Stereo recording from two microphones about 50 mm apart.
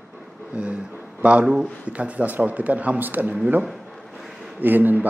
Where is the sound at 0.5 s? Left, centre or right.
Right.